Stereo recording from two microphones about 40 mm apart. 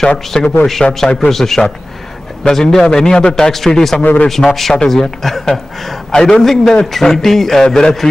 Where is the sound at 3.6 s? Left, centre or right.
Centre.